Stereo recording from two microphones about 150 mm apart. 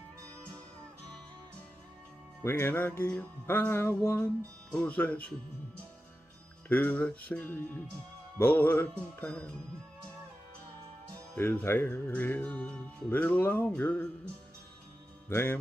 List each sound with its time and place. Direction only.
2.4 s music: 15° left (ahead or behind)
6.7 s music: 10° left (ahead or behind)
11.3 s music: 10° left (ahead or behind)
15.2 s speech: 15° left (ahead or behind)